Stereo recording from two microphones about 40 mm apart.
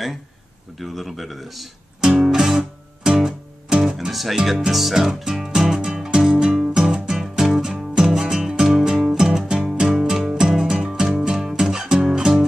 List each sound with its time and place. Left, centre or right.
0.7 s speech: centre
2.0 s music: centre
2.3 s guitar: centre
4.1 s speech: centre
4.5 s music: centre